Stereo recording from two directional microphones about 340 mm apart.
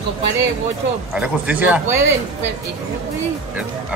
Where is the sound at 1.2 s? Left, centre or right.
Centre.